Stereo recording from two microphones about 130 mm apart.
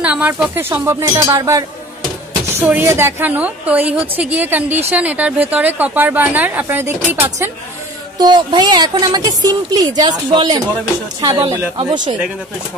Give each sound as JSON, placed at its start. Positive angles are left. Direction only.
{"t": 0.0, "sound": "speech", "side_deg": -10}
{"t": 2.6, "sound": "speech", "side_deg": -15}
{"t": 8.2, "sound": "a woman's voice", "side_deg": -35}